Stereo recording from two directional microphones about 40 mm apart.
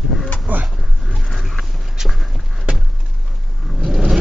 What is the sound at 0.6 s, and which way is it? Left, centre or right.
Dog, centre.